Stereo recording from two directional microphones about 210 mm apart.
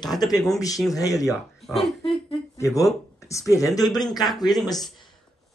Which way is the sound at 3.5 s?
15° left (ahead or behind).